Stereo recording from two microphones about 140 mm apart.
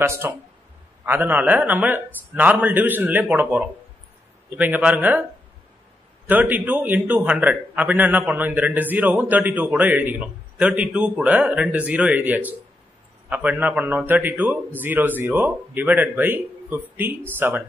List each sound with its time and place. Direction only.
0.0 s a man's voice: 15° right (ahead or behind)
6.2 s a man's voice: 10° right (ahead or behind)